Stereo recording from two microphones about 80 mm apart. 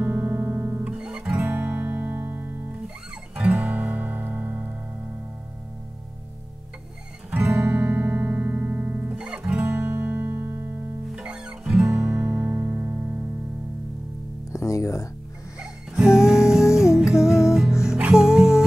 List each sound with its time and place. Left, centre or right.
0.0 s music: right
0.8 s music: centre; by 2.6 s right
3.3 s music: centre
7.2 s music: centre
9.2 s guitar: centre
11.1 s music: centre
12.0 s music: right
14.5 s music: left
15.6 s music: centre